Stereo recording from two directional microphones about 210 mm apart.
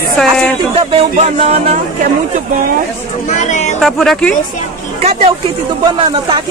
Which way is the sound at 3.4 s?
35° left (ahead or behind).